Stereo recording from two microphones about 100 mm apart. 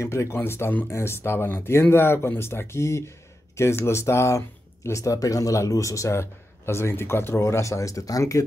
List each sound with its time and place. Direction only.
0.0 s speech: 30° left (ahead or behind)